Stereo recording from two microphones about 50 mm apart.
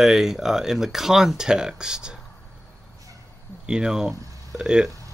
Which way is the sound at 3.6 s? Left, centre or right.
Centre.